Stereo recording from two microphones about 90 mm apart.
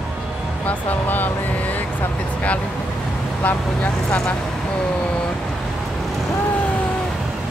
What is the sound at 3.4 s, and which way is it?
Speech, 20° left (ahead or behind).